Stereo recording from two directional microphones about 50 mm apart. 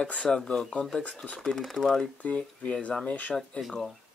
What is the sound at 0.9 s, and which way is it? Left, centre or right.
Speech, left.